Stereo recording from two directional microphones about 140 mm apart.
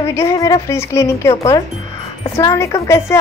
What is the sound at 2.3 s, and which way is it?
Speech, 25° left (ahead or behind).